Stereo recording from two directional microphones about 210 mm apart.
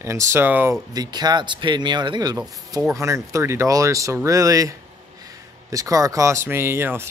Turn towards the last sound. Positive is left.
turn(degrees=-10)  # may be behind; listen again after turning